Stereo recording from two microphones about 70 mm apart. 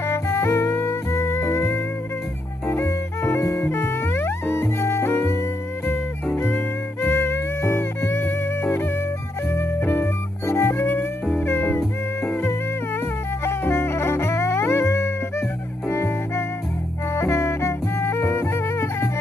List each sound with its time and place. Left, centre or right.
0.0 s music: left
9.8 s music: left
13.4 s music: left